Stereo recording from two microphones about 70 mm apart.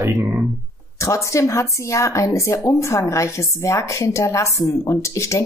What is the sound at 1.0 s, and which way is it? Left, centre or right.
Speech, left.